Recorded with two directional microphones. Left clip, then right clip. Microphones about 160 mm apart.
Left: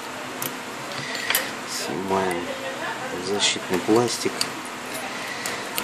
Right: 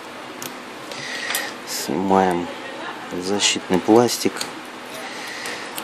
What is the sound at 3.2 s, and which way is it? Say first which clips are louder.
Speech: right 3 dB; 65° right (ahead or behind).